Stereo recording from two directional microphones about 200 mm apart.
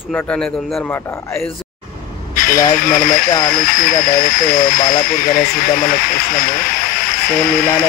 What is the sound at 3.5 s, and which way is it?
Speech, 45° left (ahead or behind).